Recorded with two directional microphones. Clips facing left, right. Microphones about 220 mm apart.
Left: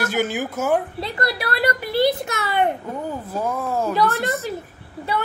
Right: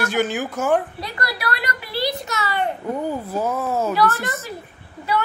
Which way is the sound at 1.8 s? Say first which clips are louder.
Left 6 dB; 50° left (ahead or behind).